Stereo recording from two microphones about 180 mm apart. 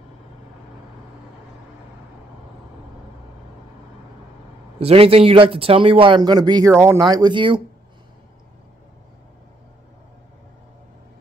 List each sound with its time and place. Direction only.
4.7 s a man's voice: 35° right (ahead or behind)